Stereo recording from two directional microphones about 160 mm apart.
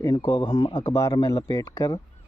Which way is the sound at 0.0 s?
20° left (ahead or behind).